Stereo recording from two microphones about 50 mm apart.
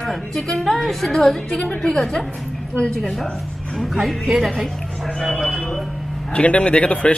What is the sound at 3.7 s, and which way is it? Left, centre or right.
A man's voice, centre.